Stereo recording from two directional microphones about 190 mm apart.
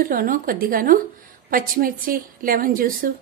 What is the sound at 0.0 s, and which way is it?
Speech, 50° right (ahead or behind).